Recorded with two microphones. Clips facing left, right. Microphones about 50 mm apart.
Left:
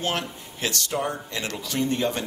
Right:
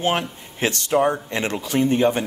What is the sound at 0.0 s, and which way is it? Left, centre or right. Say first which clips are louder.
Speech: right 6 dB; right.